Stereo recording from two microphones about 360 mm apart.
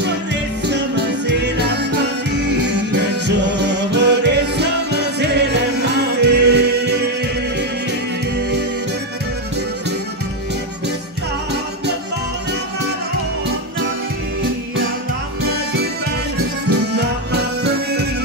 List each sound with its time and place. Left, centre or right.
0.0 s music: right
16.9 s music: right